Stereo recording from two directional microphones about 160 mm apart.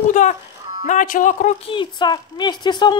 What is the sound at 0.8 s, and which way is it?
Speech, 55° left (ahead or behind).